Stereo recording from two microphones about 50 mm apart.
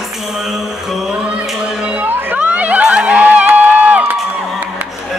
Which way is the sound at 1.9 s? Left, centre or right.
Right.